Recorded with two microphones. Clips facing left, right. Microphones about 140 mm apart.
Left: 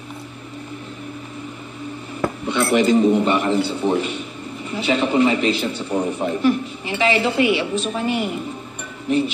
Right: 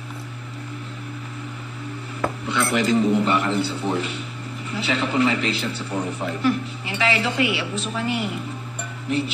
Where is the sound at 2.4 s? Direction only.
20° left (ahead or behind).